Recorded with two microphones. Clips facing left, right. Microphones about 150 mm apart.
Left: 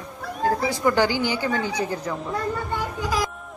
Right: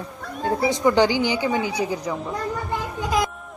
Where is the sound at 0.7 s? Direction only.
20° right (ahead or behind).